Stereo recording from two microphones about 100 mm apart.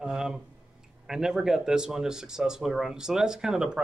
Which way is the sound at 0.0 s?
5° right (ahead or behind).